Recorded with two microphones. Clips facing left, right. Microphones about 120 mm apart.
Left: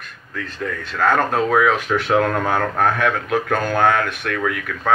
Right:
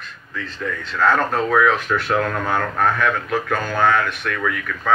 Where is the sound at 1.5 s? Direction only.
65° left (ahead or behind).